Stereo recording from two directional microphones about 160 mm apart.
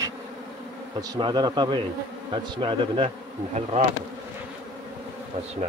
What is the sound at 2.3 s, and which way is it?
Bee, 30° right (ahead or behind).